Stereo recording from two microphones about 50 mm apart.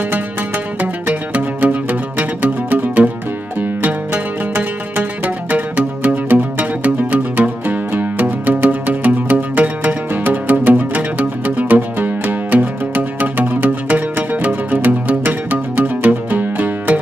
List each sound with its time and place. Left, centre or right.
0.7 s music: right
3.8 s zither: right
10.7 s music: right